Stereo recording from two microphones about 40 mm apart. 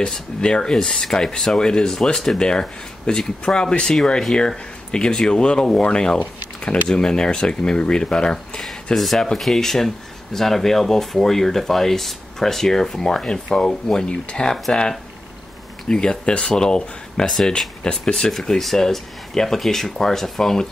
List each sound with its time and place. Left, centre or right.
0.4 s speech: left
8.9 s speech: centre